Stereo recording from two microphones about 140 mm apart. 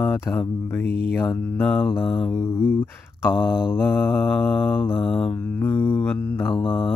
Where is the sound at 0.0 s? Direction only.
15° left (ahead or behind).